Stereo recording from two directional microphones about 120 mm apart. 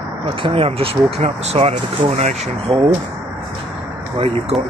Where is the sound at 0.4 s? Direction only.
55° right (ahead or behind).